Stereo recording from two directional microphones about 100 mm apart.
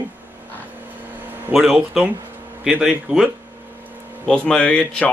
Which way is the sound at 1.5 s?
Centre (ahead or behind).